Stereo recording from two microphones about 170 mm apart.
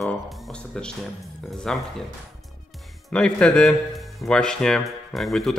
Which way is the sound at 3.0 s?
5° left (ahead or behind).